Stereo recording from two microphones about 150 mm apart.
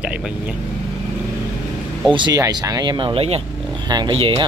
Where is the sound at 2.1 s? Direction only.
25° right (ahead or behind).